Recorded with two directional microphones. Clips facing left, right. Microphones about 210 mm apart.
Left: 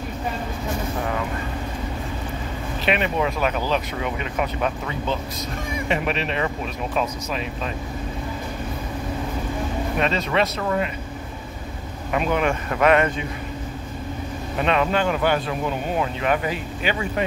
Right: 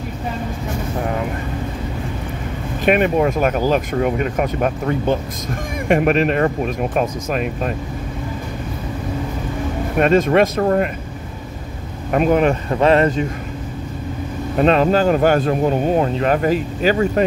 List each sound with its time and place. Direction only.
2.8 s speech: 50° right (ahead or behind)
9.9 s speech: 50° right (ahead or behind)
12.1 s speech: 45° right (ahead or behind)
14.6 s speech: 40° right (ahead or behind)